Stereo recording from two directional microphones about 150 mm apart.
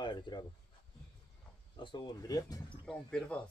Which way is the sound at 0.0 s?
30° left (ahead or behind).